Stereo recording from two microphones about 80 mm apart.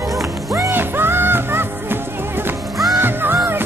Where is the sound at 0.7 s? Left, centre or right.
Right.